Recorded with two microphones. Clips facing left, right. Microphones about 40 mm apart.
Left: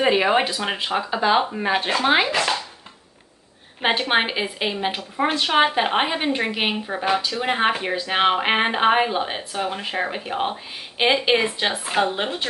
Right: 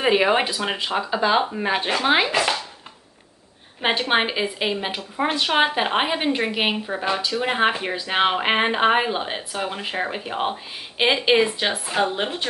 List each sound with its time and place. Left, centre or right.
0.0 s speech: centre
3.8 s speech: centre
7.1 s a woman's voice: centre